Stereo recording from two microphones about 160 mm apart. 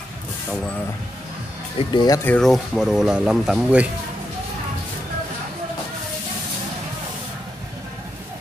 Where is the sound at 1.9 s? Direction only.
25° left (ahead or behind).